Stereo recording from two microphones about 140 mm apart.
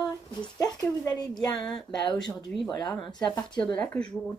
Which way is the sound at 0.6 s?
25° left (ahead or behind).